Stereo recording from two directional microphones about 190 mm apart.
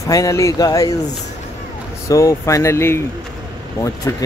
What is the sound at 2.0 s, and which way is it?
Speech, 15° left (ahead or behind).